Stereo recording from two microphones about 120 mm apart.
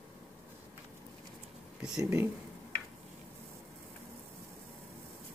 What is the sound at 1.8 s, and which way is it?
Speech, 5° right (ahead or behind).